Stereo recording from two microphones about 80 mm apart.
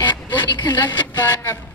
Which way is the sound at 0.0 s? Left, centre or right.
Left.